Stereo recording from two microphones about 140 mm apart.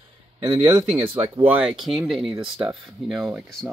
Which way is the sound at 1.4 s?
10° right (ahead or behind).